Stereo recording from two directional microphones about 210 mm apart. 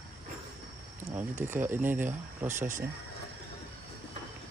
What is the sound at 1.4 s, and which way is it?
Speech, 10° right (ahead or behind).